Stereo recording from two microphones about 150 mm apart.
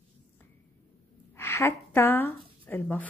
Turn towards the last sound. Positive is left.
turn(degrees=10)  # may be behind; listen again after turning